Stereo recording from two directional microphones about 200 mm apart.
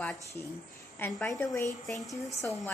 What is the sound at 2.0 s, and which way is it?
Speech, 15° left (ahead or behind).